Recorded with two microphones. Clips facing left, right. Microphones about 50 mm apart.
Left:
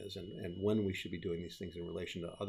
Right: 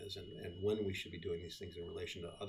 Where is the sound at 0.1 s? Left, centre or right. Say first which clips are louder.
Left 4 dB; left.